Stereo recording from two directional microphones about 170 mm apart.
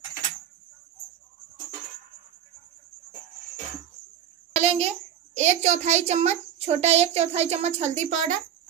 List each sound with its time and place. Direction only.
4.6 s a child's voice: 35° right (ahead or behind)